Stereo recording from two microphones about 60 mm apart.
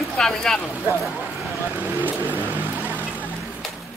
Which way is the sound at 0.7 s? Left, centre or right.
Right.